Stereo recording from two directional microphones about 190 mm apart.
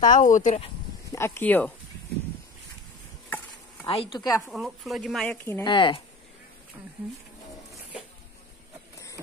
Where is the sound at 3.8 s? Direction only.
30° left (ahead or behind).